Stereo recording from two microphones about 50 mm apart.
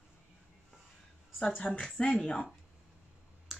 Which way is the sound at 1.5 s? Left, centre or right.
Left.